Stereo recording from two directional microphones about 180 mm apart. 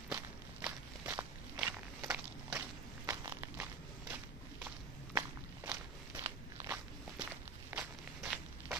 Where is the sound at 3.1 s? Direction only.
15° right (ahead or behind).